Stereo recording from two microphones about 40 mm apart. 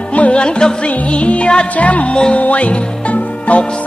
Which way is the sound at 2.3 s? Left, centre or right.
Left.